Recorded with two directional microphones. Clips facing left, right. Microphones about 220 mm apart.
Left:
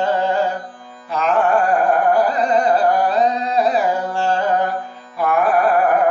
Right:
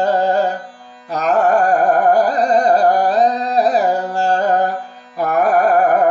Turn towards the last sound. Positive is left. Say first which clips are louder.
# right 2 dB
turn(degrees=-40)  # may be behind; listen again after turning